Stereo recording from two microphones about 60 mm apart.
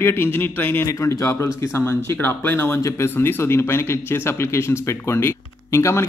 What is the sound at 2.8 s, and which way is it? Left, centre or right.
Speech, left.